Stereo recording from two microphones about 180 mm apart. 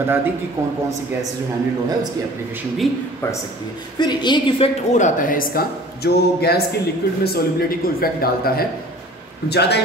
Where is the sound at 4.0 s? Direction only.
25° left (ahead or behind); by 6.6 s 60° left (ahead or behind).